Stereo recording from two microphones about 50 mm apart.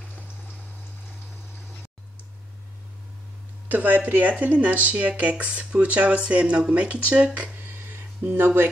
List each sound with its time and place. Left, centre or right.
3.6 s speech: right
8.2 s speech: right